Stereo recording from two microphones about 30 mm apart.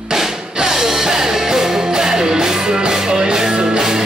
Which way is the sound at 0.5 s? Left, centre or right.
Centre.